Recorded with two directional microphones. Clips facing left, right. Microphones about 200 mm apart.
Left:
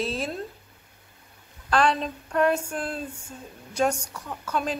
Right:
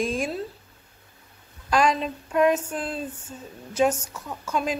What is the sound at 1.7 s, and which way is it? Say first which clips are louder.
A woman's voice: right 1 dB; 10° right (ahead or behind).